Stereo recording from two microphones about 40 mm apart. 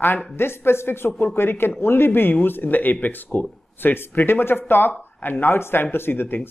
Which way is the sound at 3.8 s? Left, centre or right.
Left.